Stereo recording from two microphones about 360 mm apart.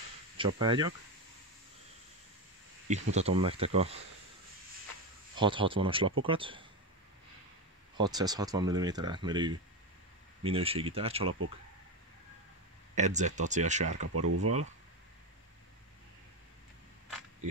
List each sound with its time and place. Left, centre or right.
0.4 s speech: centre
3.2 s speech: centre
5.3 s speech: centre
8.0 s speech: centre
12.9 s speech: centre
14.1 s speech: right